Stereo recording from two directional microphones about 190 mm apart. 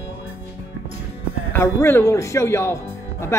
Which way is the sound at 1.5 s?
15° left (ahead or behind).